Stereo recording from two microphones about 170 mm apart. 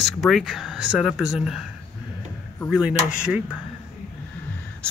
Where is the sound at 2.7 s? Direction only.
5° right (ahead or behind).